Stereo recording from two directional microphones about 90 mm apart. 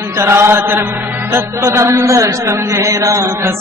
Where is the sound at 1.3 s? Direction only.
35° right (ahead or behind).